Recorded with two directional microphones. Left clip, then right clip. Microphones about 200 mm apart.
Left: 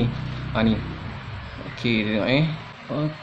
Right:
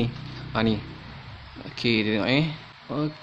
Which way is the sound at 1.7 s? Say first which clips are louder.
Even; 40° right (ahead or behind).